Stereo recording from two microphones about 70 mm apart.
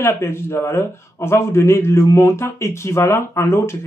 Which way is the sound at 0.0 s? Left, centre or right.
Left.